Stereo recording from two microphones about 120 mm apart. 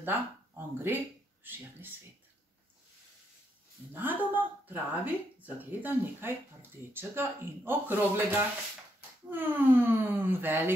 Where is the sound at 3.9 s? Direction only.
15° right (ahead or behind).